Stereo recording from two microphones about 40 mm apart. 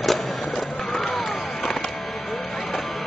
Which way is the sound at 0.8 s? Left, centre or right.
Centre.